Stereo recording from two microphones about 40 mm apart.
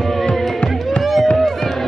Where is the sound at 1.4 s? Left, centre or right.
Centre.